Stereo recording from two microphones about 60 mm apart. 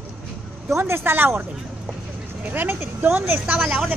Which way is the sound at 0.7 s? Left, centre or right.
Right.